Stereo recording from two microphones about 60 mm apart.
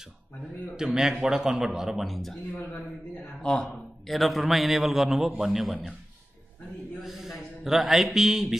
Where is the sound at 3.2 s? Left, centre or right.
Centre.